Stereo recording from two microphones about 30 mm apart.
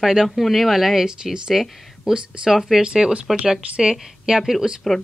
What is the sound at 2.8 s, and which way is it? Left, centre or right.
A woman's voice, right.